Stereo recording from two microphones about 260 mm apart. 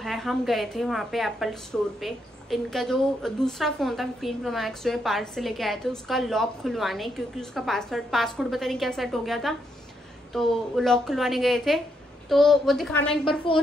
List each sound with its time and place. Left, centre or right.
0.0 s a woman's voice: centre
13.5 s a woman's voice: centre